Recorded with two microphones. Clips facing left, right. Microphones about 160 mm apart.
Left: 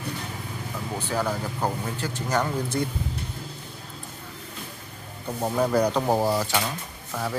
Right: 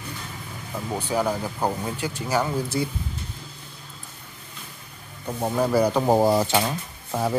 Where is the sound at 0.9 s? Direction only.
15° right (ahead or behind).